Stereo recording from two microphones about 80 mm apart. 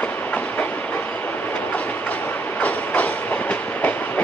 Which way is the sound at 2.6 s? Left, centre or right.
Centre.